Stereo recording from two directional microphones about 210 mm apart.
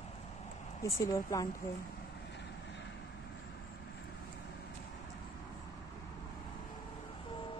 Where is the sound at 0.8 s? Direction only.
15° left (ahead or behind).